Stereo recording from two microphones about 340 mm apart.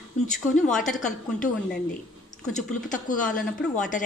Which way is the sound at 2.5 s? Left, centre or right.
Left.